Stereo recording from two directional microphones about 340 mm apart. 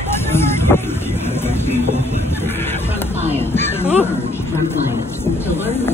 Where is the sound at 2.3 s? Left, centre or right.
Centre.